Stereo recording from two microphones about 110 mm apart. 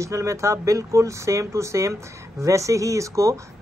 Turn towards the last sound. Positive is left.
turn(degrees=-30)  # may be behind; listen again after turning